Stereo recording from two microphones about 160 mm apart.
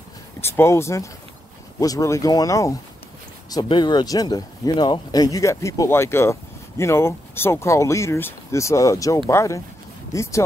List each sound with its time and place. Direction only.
0.4 s speech: 15° left (ahead or behind)